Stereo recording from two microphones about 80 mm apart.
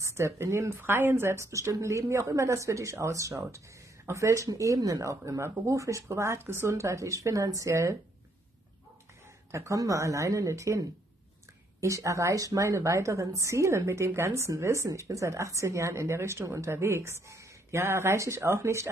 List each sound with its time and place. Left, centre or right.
0.0 s a woman's voice: right
9.5 s a woman's voice: right